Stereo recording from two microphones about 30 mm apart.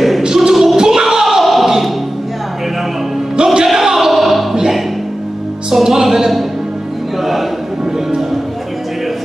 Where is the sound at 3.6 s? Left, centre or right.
Centre.